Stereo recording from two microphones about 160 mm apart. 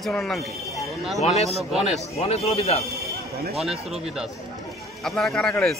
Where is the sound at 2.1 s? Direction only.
40° left (ahead or behind).